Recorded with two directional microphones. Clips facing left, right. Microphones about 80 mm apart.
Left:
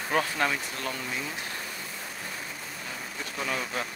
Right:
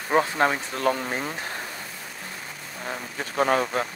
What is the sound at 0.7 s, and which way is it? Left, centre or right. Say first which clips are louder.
Speech: right 9 dB; right.